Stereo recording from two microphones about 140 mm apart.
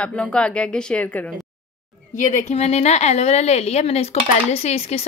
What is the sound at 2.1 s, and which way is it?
A woman's voice, 55° left (ahead or behind).